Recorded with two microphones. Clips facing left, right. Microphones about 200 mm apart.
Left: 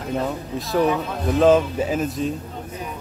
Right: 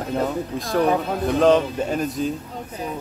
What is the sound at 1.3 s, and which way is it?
Speech, 5° left (ahead or behind).